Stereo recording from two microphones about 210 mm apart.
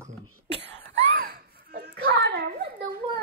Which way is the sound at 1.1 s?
45° right (ahead or behind).